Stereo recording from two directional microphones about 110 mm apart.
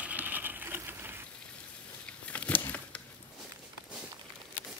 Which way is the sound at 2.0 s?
10° left (ahead or behind).